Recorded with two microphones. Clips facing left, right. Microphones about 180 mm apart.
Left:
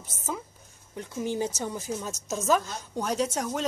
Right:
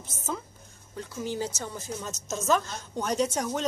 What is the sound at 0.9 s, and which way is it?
A woman's voice, 20° left (ahead or behind).